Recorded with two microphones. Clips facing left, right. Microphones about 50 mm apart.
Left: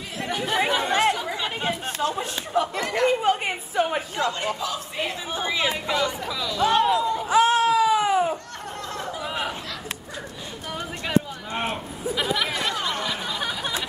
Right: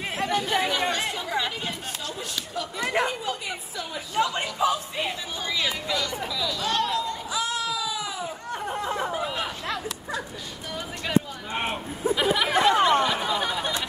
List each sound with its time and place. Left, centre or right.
0.3 s speech: centre
0.9 s chatter: left
1.9 s speech: left
3.2 s a woman's voice: left
4.6 s speech: right
5.3 s speech: left
6.1 s speech: centre
7.2 s a sound: left
8.6 s a sound: centre
11.5 s a sound: centre
12.5 s chatter: right
13.1 s a sound: centre